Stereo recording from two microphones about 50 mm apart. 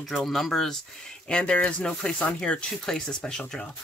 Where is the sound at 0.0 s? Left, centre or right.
Centre.